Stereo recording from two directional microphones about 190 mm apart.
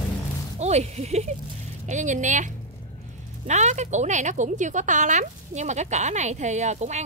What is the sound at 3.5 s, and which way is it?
A woman's voice, 35° right (ahead or behind).